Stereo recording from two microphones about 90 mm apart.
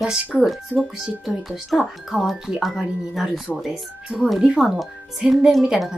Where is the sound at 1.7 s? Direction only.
Centre (ahead or behind).